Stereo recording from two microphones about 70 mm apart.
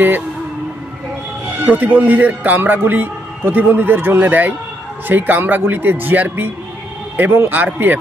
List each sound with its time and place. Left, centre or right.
1.7 s a man's voice: right